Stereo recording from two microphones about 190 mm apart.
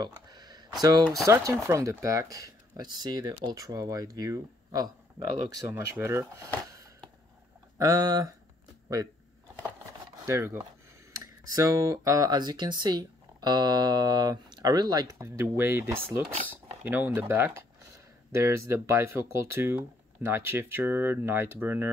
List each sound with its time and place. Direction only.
0.0 s a sound: 20° right (ahead or behind)
1.2 s speech: 15° right (ahead or behind)
7.8 s speech: 20° right (ahead or behind)
10.2 s speech: 15° right (ahead or behind)